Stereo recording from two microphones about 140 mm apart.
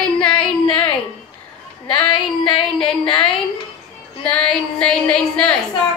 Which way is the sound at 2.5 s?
40° left (ahead or behind).